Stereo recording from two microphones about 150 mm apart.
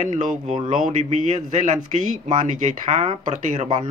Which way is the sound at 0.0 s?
60° right (ahead or behind).